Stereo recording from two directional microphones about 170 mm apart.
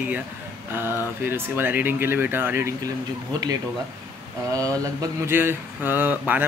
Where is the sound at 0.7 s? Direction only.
15° right (ahead or behind).